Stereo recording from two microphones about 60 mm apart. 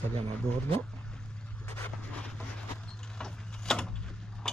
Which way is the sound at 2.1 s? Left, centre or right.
Centre.